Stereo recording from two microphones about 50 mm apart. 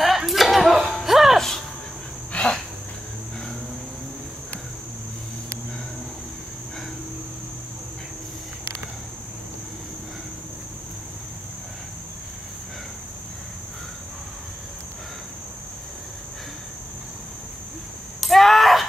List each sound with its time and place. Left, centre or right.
0.0 s music: centre
2.3 s insect: left
18.2 s a sound: centre